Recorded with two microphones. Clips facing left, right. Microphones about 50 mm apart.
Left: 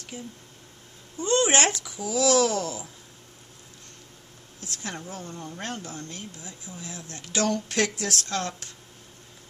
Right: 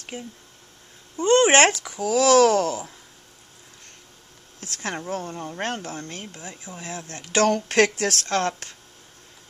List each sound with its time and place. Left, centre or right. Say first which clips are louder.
0.1 s speech: right 2 dB; right
4.6 s speech: right 5 dB; right